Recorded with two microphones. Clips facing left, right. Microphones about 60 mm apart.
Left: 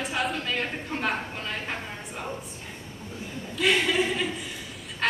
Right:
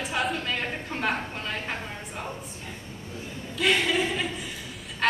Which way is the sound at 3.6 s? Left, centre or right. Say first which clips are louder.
Even; centre.